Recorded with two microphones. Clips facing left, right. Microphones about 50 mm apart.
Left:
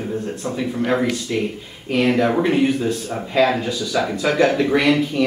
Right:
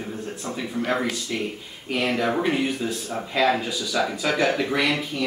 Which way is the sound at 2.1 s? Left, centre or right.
Centre.